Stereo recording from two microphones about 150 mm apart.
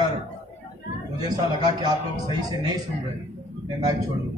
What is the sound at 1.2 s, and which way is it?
Speech, 25° right (ahead or behind).